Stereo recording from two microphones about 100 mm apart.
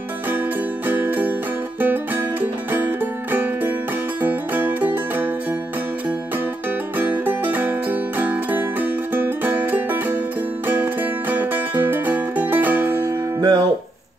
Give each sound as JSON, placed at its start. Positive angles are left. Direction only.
{"t": 0.8, "sound": "music", "side_deg": -20}
{"t": 7.0, "sound": "music", "side_deg": -20}
{"t": 12.9, "sound": "music", "side_deg": -40}